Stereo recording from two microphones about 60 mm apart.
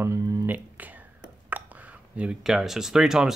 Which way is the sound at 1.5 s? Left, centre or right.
Right.